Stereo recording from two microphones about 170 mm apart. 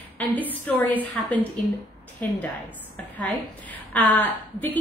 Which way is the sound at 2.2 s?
10° left (ahead or behind).